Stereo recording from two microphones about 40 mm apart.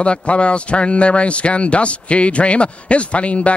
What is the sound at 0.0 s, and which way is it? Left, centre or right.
A man's voice, left.